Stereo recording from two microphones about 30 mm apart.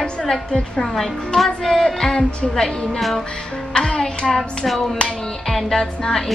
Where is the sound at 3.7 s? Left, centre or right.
Left.